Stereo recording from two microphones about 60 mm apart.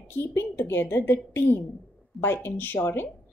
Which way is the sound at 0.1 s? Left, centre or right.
Left.